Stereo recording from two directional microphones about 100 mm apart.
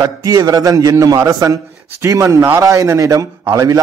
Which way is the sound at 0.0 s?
35° right (ahead or behind).